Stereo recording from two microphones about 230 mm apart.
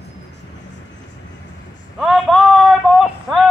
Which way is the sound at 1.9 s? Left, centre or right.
Centre.